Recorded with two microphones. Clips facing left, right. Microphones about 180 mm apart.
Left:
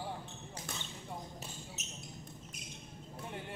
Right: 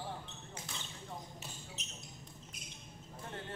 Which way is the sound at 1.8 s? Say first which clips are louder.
Left 2 dB; 45° left (ahead or behind).